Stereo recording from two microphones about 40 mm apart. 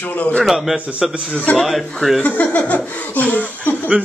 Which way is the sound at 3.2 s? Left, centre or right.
Left.